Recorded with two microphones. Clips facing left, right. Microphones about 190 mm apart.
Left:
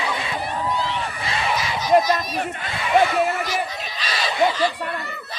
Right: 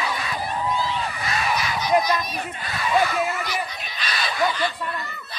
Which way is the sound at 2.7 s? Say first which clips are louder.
Left 3 dB; 25° left (ahead or behind).